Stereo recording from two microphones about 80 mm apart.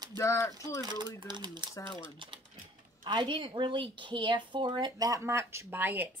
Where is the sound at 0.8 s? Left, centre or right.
Right.